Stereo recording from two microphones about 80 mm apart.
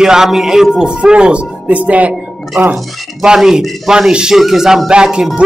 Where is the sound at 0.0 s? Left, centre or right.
Centre.